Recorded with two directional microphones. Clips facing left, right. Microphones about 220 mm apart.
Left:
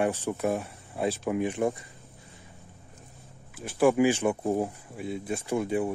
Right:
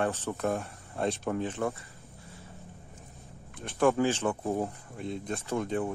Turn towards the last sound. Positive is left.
turn(degrees=15)  # may be behind; listen again after turning